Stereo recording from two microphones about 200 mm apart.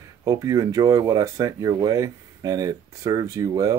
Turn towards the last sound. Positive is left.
turn(degrees=-15)  # may be behind; listen again after turning